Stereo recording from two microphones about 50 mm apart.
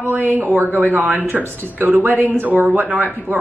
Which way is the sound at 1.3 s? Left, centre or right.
Right.